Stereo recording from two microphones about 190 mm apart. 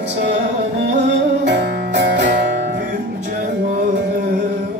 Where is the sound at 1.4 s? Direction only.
60° right (ahead or behind).